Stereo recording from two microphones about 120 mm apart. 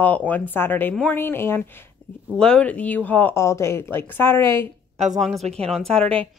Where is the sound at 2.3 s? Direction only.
5° left (ahead or behind).